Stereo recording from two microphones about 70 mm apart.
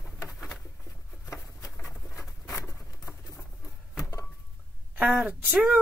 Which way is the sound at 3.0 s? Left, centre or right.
Left.